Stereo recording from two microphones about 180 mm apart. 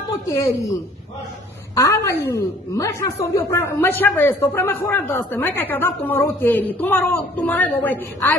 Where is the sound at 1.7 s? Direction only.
15° left (ahead or behind).